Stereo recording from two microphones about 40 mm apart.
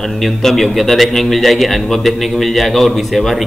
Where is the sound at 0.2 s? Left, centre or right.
Centre.